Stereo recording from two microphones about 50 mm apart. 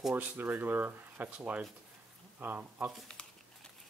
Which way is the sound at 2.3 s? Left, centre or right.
Right.